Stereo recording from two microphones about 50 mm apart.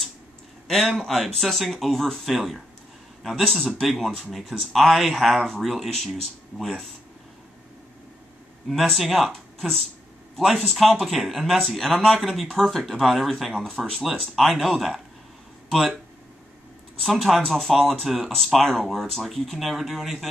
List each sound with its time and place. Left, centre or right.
0.7 s speech: centre
3.8 s speech: centre
8.6 s speech: centre
17.0 s speech: centre